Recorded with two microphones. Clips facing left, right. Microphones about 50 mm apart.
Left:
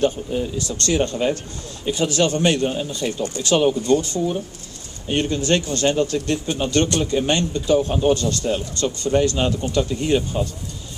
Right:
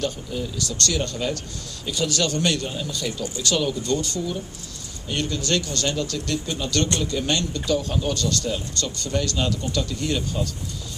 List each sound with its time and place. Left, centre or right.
0.0 s speech: left